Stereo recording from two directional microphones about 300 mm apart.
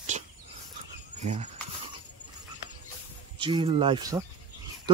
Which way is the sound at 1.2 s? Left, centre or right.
Right.